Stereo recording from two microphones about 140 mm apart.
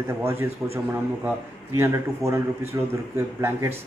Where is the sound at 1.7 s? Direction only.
20° right (ahead or behind).